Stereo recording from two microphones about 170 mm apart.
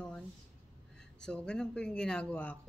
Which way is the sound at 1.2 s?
5° left (ahead or behind).